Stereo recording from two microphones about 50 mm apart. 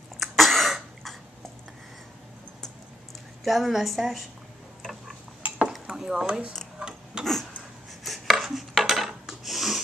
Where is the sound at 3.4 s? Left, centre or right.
Centre.